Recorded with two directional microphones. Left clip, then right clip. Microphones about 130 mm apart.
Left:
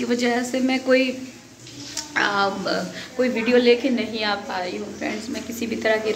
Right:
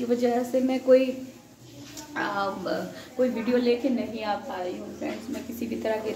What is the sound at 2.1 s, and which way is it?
A woman's voice, centre (ahead or behind).